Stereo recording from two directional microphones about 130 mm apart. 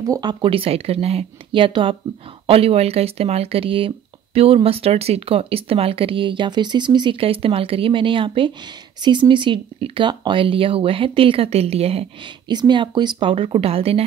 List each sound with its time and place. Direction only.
0.0 s speech: 30° right (ahead or behind); by 12.1 s 50° right (ahead or behind)
12.4 s speech: 35° right (ahead or behind); by 14.0 s 50° right (ahead or behind)